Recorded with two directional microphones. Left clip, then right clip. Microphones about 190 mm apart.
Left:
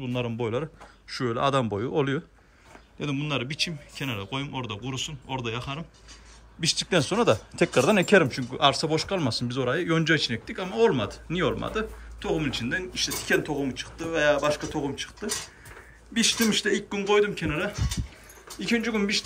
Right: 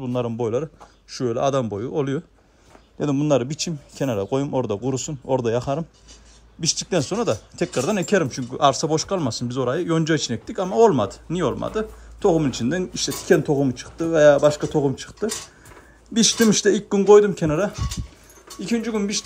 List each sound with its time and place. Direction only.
0.0 s speech: 10° right (ahead or behind)
3.0 s speech: 20° right (ahead or behind)
6.6 s speech: 5° right (ahead or behind)
12.2 s speech: 25° right (ahead or behind)
15.2 s speech: centre (ahead or behind)
16.2 s speech: 30° right (ahead or behind)
18.5 s speech: 5° right (ahead or behind)